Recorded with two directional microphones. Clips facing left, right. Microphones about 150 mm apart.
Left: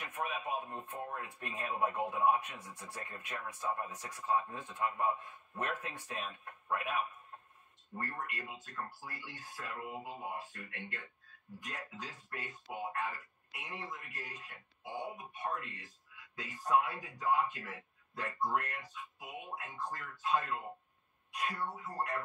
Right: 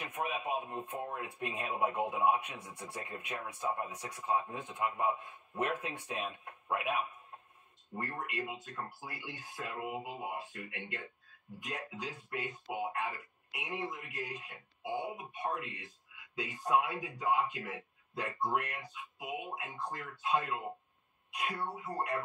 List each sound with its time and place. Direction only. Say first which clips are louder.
0.0 s speech: right 2 dB; 20° right (ahead or behind)